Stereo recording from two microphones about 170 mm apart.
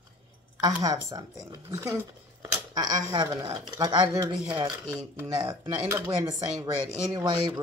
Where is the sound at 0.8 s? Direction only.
20° right (ahead or behind).